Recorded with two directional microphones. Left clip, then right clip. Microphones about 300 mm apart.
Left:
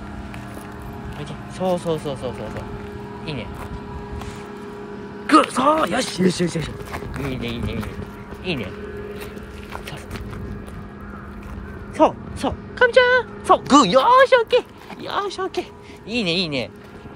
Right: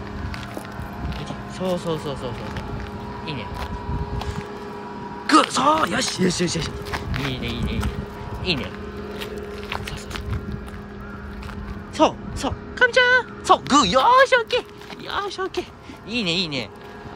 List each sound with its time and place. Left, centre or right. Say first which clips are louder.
1.6 s speech: left 3 dB; centre
5.2 s speech: left 1 dB; centre
12.0 s speech: left 2 dB; centre